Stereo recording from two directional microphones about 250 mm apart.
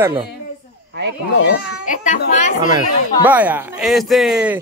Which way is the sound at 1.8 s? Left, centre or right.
Left.